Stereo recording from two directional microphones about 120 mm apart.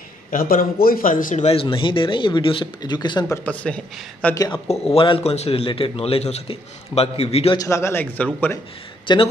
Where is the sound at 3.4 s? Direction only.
10° left (ahead or behind).